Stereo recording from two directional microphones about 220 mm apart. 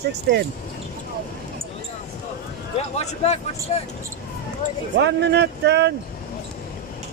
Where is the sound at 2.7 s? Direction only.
30° left (ahead or behind).